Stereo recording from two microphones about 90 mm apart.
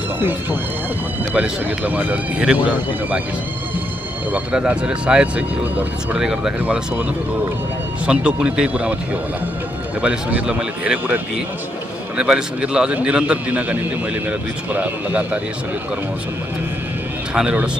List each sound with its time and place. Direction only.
0.2 s speech: 25° right (ahead or behind)
4.3 s speech: 15° right (ahead or behind)
8.1 s speech: 10° right (ahead or behind)
10.0 s speech: 15° right (ahead or behind)
12.2 s speech: 10° right (ahead or behind)
17.3 s speech: 10° right (ahead or behind)